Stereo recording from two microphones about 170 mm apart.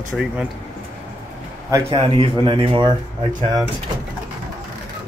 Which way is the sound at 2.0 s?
30° right (ahead or behind).